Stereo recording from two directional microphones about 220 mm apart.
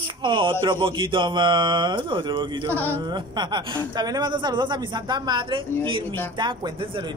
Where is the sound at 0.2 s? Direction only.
25° right (ahead or behind).